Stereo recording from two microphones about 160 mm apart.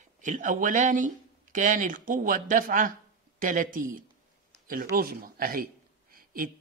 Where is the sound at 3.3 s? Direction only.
60° right (ahead or behind).